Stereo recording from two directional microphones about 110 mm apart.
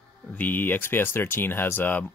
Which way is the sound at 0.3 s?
15° left (ahead or behind).